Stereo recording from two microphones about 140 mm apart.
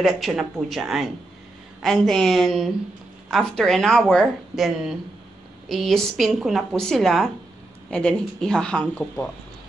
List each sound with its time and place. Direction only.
0.0 s speech: centre (ahead or behind)